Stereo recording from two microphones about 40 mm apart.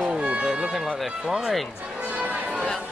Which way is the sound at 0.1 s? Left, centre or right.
Right.